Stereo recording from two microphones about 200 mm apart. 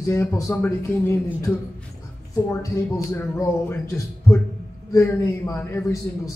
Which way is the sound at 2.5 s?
15° left (ahead or behind).